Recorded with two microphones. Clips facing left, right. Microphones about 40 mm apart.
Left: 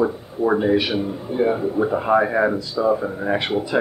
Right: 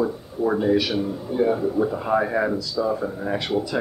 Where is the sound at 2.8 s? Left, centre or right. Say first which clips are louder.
Left 8 dB; centre.